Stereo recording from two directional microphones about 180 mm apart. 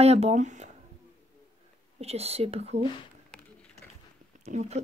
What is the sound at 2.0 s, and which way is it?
Speech, 35° right (ahead or behind).